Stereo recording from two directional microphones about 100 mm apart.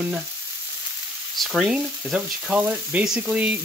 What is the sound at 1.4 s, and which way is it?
Frying, 5° right (ahead or behind).